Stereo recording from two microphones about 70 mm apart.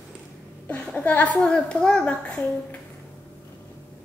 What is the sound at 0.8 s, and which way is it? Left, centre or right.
A woman's voice, centre.